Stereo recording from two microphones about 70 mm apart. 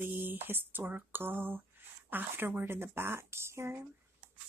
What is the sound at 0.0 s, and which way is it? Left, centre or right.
Speech, right.